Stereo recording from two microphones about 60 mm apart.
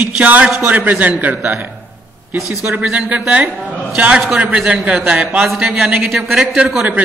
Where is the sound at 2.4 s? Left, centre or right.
Centre.